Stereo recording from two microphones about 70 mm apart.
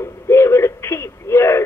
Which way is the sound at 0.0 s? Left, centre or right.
Left.